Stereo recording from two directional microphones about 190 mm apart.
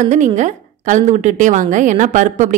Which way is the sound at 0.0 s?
40° right (ahead or behind).